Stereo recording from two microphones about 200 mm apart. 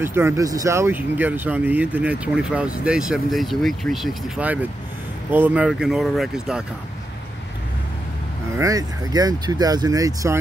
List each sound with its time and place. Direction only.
0.0 s speech: 10° right (ahead or behind)
8.5 s speech: 15° right (ahead or behind)